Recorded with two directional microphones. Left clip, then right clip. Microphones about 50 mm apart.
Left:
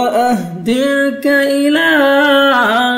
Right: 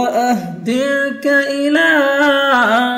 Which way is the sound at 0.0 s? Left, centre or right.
Right.